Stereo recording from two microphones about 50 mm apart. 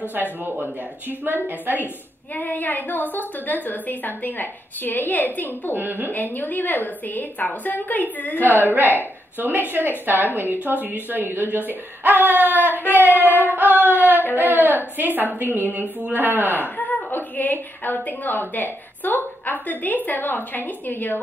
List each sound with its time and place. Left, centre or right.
0.1 s a woman's voice: right
2.3 s a woman's voice: left
5.8 s a woman's voice: right
6.1 s a woman's voice: left
8.4 s a woman's voice: right
13.1 s a woman's voice: left
13.5 s a woman's voice: right
16.5 s a woman's voice: left